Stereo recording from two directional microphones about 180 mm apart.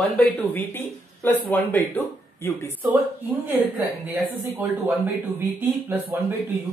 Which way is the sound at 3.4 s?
10° right (ahead or behind).